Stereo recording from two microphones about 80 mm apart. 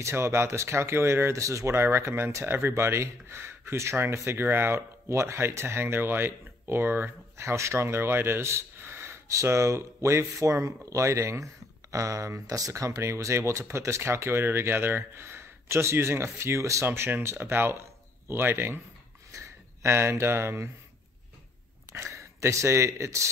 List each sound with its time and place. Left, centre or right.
0.0 s speech: right
21.9 s speech: right